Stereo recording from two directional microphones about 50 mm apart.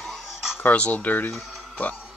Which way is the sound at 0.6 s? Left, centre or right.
Left.